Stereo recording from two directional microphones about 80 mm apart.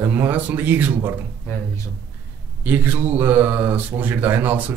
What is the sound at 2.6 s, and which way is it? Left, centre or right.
Speech, right.